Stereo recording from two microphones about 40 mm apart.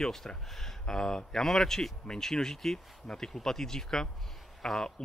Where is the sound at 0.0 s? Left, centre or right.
Centre.